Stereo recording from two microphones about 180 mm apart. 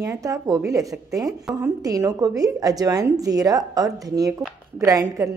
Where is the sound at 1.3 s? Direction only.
5° right (ahead or behind).